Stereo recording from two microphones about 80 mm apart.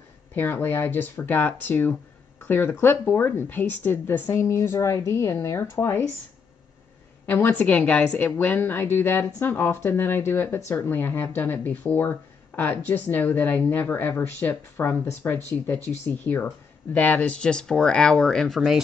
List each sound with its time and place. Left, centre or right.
0.3 s a woman's voice: left
4.3 s speech: left
7.2 s a woman's voice: left; by 18.8 s centre